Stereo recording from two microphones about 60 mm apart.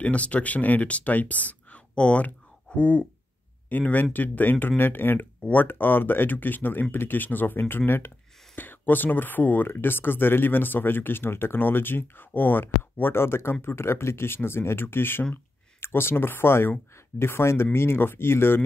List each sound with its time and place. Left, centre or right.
0.0 s speech: left